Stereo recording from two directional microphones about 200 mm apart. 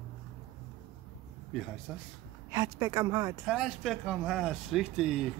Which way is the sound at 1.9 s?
Centre (ahead or behind).